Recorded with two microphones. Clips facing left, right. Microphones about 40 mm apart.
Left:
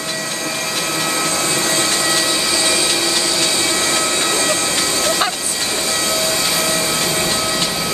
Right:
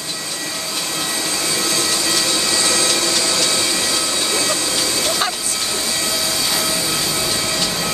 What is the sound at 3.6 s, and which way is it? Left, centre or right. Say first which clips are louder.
Train: left 3 dB; left.